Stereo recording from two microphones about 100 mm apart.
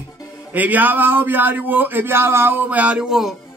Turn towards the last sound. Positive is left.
turn(degrees=-5)  # may be behind; listen again after turning